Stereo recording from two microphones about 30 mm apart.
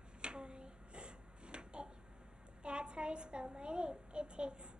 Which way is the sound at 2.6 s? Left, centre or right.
Right.